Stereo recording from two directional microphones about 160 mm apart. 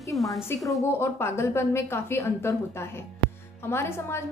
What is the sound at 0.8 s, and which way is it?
A woman's voice, 15° left (ahead or behind).